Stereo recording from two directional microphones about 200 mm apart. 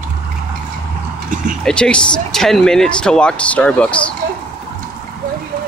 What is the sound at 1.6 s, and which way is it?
Speech, 5° left (ahead or behind).